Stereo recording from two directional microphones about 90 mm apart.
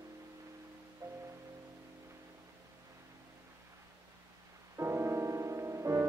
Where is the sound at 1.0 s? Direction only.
30° right (ahead or behind).